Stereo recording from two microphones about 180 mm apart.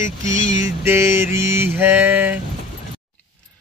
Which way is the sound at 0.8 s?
15° right (ahead or behind).